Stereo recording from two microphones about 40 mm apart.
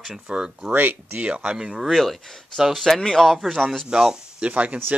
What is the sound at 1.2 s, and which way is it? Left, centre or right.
Speech, right.